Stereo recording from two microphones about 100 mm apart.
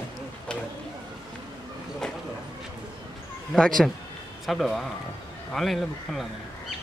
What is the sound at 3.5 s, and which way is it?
Speech, 5° left (ahead or behind).